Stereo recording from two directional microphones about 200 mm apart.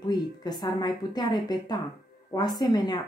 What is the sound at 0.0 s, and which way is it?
Speech, 20° left (ahead or behind).